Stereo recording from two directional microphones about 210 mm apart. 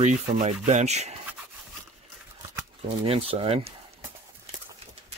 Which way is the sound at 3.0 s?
25° right (ahead or behind).